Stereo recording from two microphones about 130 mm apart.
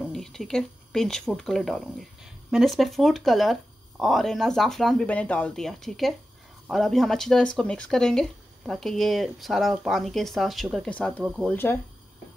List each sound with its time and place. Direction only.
0.0 s speech: 5° left (ahead or behind)
11.5 s speech: 15° left (ahead or behind)